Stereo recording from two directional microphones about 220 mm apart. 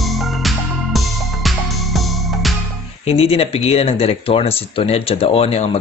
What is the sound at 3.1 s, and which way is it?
Speech, 25° left (ahead or behind).